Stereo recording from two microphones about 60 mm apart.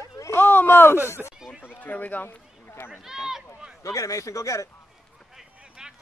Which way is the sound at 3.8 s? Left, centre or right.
Left.